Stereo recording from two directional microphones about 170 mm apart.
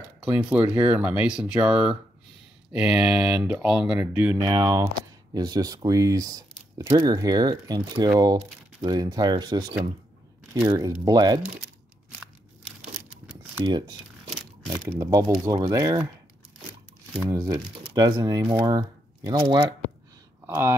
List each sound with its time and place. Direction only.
0.2 s speech: 5° right (ahead or behind)
4.4 s speech: 25° right (ahead or behind)
13.7 s speech: 25° right (ahead or behind)
17.3 s speech: 20° right (ahead or behind)